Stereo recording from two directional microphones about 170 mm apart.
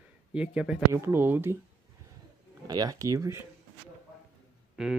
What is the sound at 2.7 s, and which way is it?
Speech, 20° right (ahead or behind).